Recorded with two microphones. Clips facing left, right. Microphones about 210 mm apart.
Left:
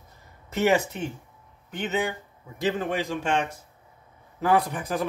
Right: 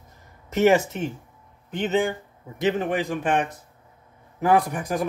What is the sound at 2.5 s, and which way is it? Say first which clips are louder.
A man's voice: right 3 dB; 20° right (ahead or behind).